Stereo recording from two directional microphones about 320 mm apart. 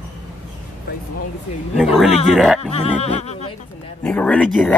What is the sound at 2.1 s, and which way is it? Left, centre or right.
Music, centre.